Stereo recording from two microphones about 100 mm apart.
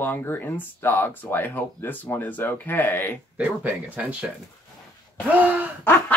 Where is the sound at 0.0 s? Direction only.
20° left (ahead or behind).